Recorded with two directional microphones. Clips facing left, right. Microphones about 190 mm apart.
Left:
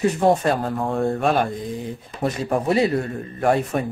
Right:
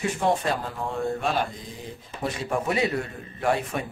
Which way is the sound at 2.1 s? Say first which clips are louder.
Left 5 dB; 35° left (ahead or behind).